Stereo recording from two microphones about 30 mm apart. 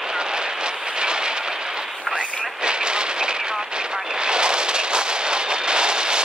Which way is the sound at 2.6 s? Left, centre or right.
Right.